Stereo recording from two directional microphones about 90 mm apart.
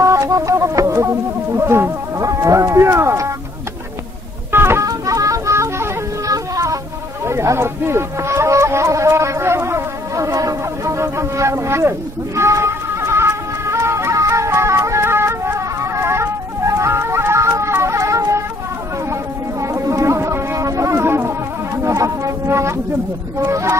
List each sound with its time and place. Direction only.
0.0 s a sound: 35° right (ahead or behind)
1.6 s speech: 30° right (ahead or behind)
4.5 s organ: 25° right (ahead or behind)
4.8 s music: 40° right (ahead or behind)
7.2 s speech: 30° right (ahead or behind)
12.4 s music: 30° right (ahead or behind)
19.6 s music: 35° right (ahead or behind)
23.4 s speech: 35° right (ahead or behind)